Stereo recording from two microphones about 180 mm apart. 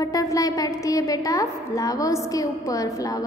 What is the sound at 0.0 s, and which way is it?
A woman's voice, 20° left (ahead or behind).